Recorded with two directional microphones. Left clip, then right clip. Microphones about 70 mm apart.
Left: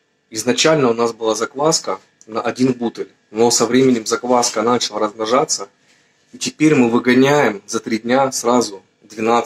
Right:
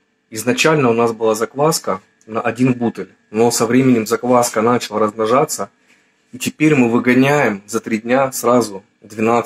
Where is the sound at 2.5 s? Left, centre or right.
Left.